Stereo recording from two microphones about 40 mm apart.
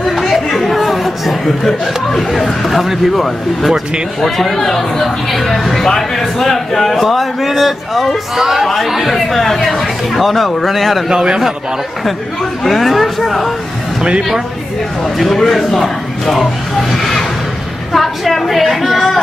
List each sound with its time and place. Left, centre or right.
0.0 s chatter: centre
0.7 s chuckle: centre
2.6 s a man's voice: centre
4.2 s a man's voice: centre
11.1 s a man's voice: centre
12.6 s a man's voice: centre
15.1 s a man's voice: centre